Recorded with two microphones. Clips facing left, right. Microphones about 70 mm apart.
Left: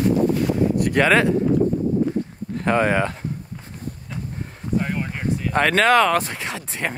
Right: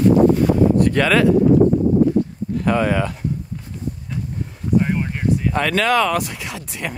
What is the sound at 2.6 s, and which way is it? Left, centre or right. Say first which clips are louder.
Speech: even; left.